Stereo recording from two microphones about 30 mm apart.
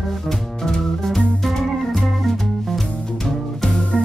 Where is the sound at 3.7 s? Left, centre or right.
Left.